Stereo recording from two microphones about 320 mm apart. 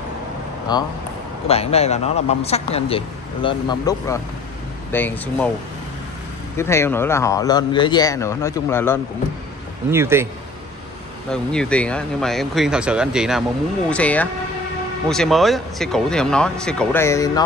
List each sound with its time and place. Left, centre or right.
0.7 s a man's voice: centre
6.5 s a man's voice: centre
9.8 s speech: centre
11.5 s speech: centre